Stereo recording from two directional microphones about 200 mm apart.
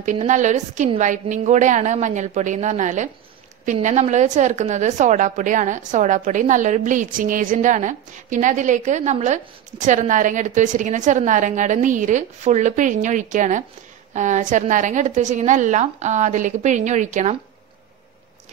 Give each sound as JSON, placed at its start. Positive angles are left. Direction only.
{"t": 0.0, "sound": "a woman's voice", "side_deg": -35}